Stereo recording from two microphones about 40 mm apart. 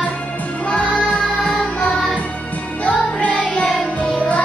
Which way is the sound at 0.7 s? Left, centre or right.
Left.